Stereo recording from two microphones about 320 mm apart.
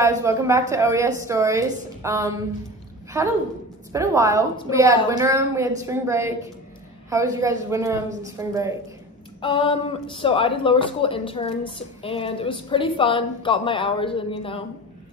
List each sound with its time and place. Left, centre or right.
0.2 s a woman's voice: centre
9.4 s speech: centre